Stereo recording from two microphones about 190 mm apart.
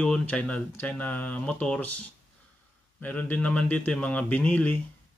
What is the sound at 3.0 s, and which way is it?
Speech, 10° left (ahead or behind).